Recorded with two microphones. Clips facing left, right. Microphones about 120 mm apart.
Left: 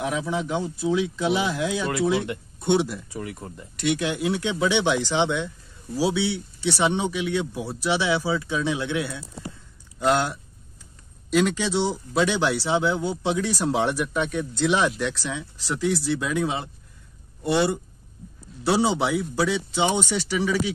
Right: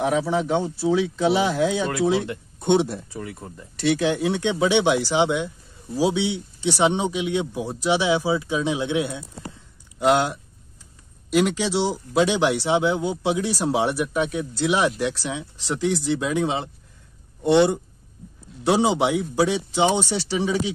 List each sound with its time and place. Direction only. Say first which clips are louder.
0.3 s speech: right 4 dB; 35° right (ahead or behind)